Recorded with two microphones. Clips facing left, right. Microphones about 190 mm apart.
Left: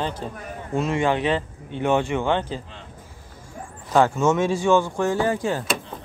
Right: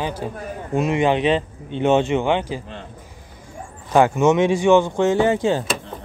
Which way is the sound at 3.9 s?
15° right (ahead or behind).